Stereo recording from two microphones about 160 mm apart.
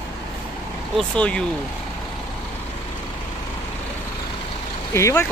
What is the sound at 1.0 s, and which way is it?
Speech, 5° left (ahead or behind).